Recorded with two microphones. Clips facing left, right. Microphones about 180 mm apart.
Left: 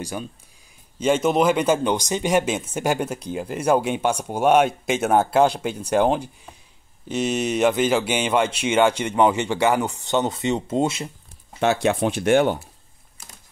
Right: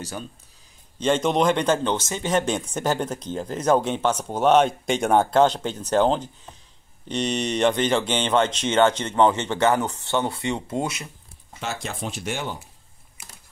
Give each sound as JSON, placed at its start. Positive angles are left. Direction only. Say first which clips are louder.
{"t": 0.9, "sound": "speech", "louder": "left 2 dB", "side_deg": 10}
{"t": 11.6, "sound": "speech", "louder": "left 11 dB", "side_deg": 65}